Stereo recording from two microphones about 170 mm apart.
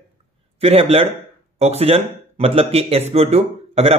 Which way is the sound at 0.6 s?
35° right (ahead or behind).